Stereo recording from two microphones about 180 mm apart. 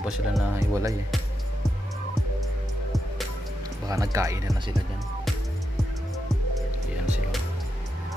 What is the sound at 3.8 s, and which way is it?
Speech, 20° right (ahead or behind).